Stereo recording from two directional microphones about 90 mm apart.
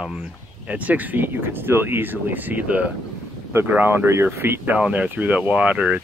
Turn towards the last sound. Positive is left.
turn(degrees=-15)  # may be behind; listen again after turning